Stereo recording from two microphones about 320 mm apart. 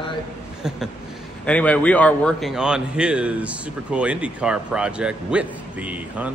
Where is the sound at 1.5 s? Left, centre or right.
Centre.